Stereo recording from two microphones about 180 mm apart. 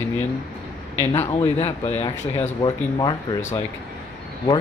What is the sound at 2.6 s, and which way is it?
Speech, 25° left (ahead or behind).